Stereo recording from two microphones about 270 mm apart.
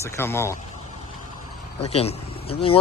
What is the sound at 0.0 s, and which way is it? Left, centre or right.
Speech, centre.